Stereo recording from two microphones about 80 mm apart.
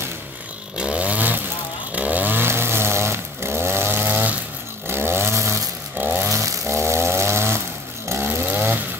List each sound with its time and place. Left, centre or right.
0.7 s chainsaw: centre
6.3 s a sound: right
8.1 s chainsaw: right